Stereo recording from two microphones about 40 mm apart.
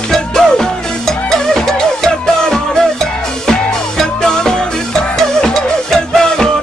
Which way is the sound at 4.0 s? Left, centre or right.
Centre.